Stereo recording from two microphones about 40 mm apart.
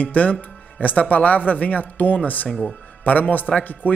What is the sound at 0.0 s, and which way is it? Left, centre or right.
Speech, left.